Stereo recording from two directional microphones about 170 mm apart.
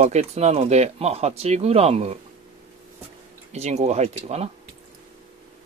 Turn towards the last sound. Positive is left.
turn(degrees=-40)  # may be behind; listen again after turning